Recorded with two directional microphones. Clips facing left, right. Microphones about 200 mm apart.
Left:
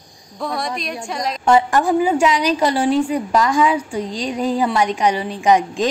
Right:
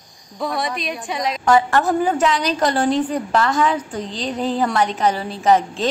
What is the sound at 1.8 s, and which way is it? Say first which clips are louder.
A woman's voice: left 2 dB; 10° left (ahead or behind).